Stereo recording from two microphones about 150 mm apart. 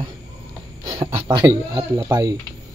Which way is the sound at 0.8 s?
30° right (ahead or behind).